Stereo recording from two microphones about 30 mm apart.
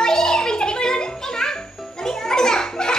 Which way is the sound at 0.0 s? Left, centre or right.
Centre.